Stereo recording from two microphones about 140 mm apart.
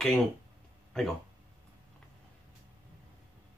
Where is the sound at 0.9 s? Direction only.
5° left (ahead or behind).